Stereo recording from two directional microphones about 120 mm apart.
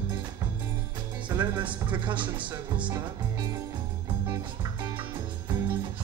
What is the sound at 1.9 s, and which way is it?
Speech, 40° right (ahead or behind).